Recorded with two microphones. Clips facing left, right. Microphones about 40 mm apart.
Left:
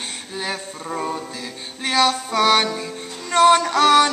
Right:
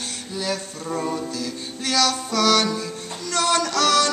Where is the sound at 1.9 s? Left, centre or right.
Left.